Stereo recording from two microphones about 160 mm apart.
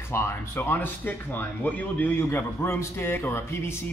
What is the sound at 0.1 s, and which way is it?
Speech, 15° left (ahead or behind).